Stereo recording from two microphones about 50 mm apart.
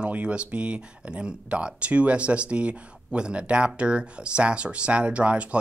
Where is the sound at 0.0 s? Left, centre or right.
Right.